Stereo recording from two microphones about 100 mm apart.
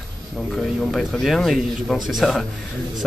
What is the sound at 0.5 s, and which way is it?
Speech, 5° left (ahead or behind).